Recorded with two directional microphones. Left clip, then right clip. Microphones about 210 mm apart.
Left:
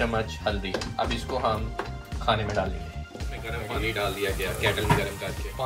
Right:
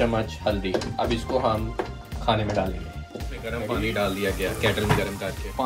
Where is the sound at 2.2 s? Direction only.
5° left (ahead or behind).